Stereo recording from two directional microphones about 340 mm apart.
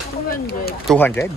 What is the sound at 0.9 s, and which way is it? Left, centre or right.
Speech, centre.